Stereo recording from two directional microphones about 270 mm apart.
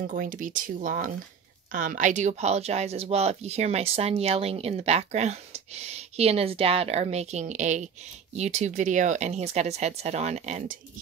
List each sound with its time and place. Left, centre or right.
0.0 s speech: right